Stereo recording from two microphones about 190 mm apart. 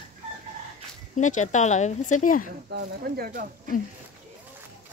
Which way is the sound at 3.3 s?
45° right (ahead or behind).